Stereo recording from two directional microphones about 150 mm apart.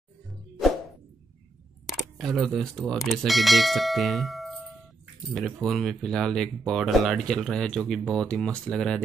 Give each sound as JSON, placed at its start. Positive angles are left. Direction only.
{"t": 1.9, "sound": "speech", "side_deg": 0}